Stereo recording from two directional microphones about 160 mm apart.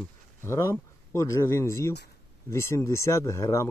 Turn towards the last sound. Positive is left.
turn(degrees=20)  # may be behind; listen again after turning